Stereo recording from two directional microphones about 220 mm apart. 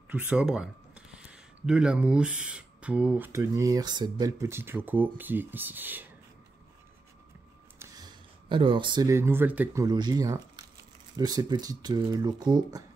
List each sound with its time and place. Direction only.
0.1 s speech: 5° right (ahead or behind)
7.8 s speech: 20° right (ahead or behind)